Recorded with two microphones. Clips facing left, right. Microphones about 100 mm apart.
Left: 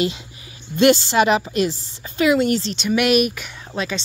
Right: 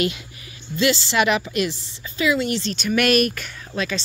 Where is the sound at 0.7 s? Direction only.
50° left (ahead or behind).